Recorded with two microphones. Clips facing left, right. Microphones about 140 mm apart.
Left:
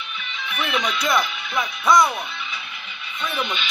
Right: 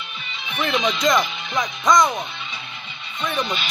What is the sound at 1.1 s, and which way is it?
Speech, 15° right (ahead or behind).